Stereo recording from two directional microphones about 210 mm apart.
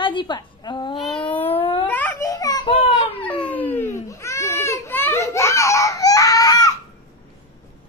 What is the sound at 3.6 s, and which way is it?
Baby cry, 10° left (ahead or behind).